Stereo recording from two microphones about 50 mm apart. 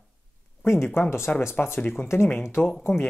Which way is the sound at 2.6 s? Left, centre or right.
Left.